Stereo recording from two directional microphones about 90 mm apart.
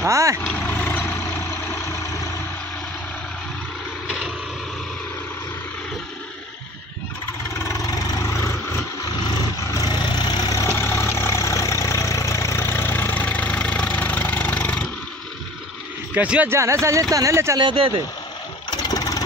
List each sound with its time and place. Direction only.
0.0 s speech: 35° right (ahead or behind)
0.5 s vehicle: 15° left (ahead or behind); by 2.2 s 35° left (ahead or behind)
7.6 s vehicle: 35° left (ahead or behind)
9.8 s vehicle: 50° left (ahead or behind)
10.8 s vehicle: 30° left (ahead or behind); by 14.9 s 10° left (ahead or behind)
16.2 s speech: 15° right (ahead or behind)
16.4 s speech: 30° right (ahead or behind)
17.6 s speech: 75° right (ahead or behind)
18.7 s vehicle: 45° left (ahead or behind)